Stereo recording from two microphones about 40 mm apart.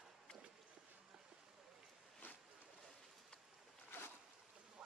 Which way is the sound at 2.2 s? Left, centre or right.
Left.